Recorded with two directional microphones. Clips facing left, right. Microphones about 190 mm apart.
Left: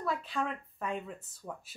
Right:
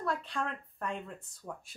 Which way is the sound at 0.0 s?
Centre (ahead or behind).